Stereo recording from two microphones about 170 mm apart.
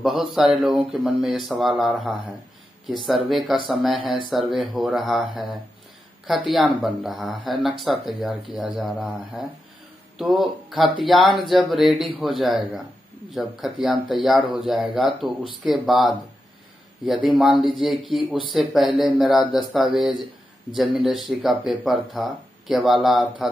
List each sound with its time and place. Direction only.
0.0 s speech: centre (ahead or behind)
17.6 s speech: 30° right (ahead or behind)
18.3 s speech: centre (ahead or behind)